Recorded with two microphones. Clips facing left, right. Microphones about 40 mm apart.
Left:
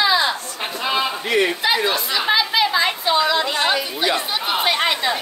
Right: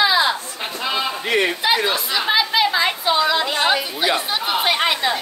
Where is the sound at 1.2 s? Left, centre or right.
Centre.